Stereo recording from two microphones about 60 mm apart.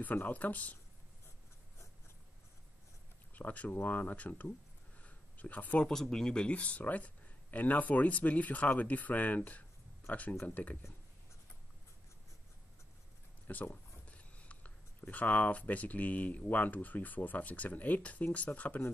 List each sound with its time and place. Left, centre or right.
0.0 s speech: left
3.3 s speech: left
5.0 s a sound: left
5.9 s speech: centre; by 10.8 s left
13.5 s speech: left